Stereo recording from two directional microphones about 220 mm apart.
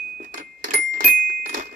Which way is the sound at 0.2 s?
40° right (ahead or behind).